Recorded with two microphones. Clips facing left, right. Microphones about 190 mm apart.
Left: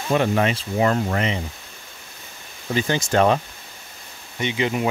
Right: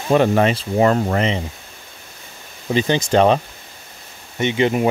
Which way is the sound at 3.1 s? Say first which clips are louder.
Right 3 dB; 25° right (ahead or behind).